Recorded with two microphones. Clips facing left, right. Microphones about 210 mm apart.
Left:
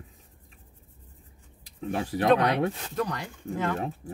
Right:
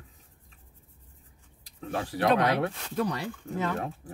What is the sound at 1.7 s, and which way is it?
Speech, 15° left (ahead or behind).